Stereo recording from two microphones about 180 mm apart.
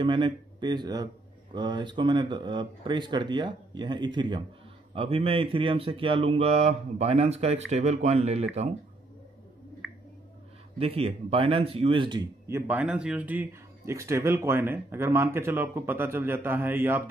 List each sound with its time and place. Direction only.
0.0 s speech: 25° right (ahead or behind)
10.8 s speech: 35° right (ahead or behind)
12.4 s speech: 15° right (ahead or behind)